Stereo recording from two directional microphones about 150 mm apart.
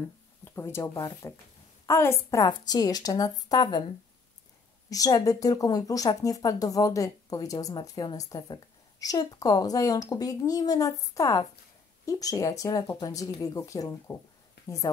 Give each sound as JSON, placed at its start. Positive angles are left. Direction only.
{"t": 0.6, "sound": "speech", "side_deg": 15}
{"t": 4.8, "sound": "speech", "side_deg": 25}